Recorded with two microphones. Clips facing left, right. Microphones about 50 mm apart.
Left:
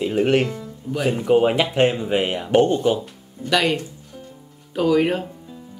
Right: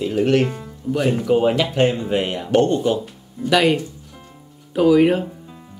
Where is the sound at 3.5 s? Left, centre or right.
Centre.